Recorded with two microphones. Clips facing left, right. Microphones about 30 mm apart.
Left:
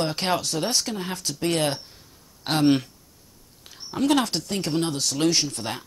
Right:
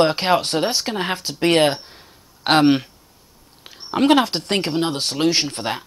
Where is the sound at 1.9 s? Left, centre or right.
Right.